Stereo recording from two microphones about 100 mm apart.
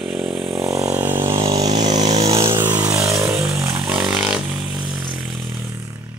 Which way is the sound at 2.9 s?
30° right (ahead or behind).